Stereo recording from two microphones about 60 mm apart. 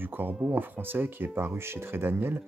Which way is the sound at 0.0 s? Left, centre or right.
Right.